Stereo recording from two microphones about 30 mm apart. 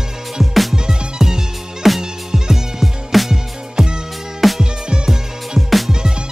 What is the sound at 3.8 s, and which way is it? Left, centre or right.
Music, right.